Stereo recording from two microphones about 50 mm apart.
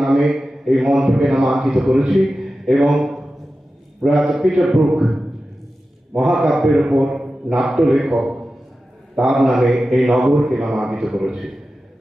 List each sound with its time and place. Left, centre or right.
0.0 s a man's voice: centre
6.2 s a man's voice: centre